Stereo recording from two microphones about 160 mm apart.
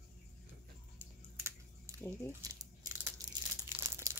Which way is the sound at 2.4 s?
25° right (ahead or behind).